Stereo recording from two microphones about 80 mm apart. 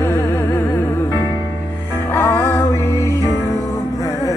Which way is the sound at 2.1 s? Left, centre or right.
Left.